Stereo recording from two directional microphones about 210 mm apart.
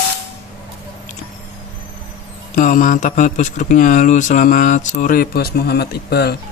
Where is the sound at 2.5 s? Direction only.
40° left (ahead or behind).